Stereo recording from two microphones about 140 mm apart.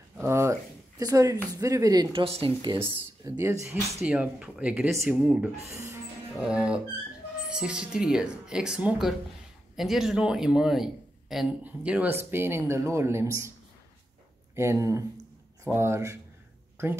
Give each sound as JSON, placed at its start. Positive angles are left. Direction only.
{"t": 0.2, "sound": "speech", "side_deg": -20}
{"t": 2.2, "sound": "speech", "side_deg": -40}
{"t": 3.3, "sound": "speech", "side_deg": -20}
{"t": 3.6, "sound": "a man's voice", "side_deg": -5}
{"t": 14.5, "sound": "speech", "side_deg": -20}